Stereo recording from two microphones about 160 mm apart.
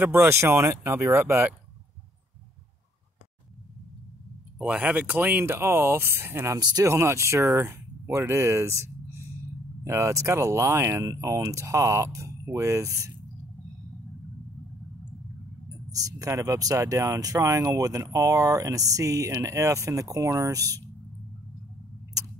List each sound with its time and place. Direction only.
0.0 s speech: 15° right (ahead or behind)
4.6 s speech: 10° right (ahead or behind)
15.9 s speech: 20° right (ahead or behind)